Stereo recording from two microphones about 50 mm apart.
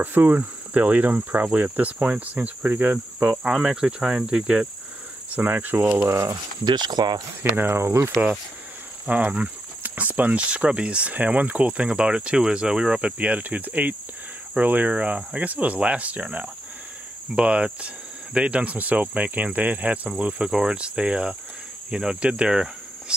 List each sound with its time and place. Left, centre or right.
0.0 s speech: right
2.7 s speech: right
3.4 s speech: centre
5.3 s speech: right
6.0 s speech: right
7.5 s speech: right
7.8 s speech: right
9.0 s speech: right
10.5 s speech: centre
13.0 s speech: right
20.4 s speech: centre